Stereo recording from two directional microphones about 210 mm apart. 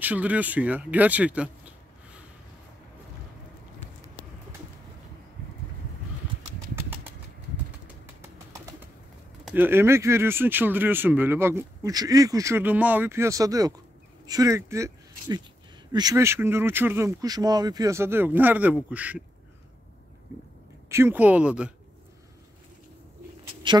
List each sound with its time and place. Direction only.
0.0 s speech: 5° right (ahead or behind)
9.4 s speech: 5° right (ahead or behind)
20.9 s speech: 10° right (ahead or behind)
23.6 s speech: 20° right (ahead or behind)